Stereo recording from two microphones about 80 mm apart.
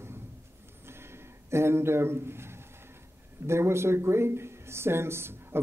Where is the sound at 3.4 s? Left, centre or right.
Right.